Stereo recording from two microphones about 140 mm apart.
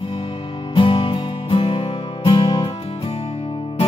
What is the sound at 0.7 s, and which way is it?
Music, 35° left (ahead or behind).